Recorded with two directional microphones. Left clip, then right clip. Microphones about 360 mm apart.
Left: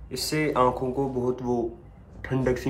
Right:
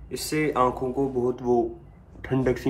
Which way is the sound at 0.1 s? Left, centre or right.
Centre.